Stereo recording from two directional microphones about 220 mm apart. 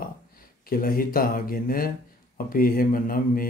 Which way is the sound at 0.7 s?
40° left (ahead or behind).